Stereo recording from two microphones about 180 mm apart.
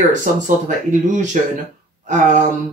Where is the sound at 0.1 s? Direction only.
45° right (ahead or behind).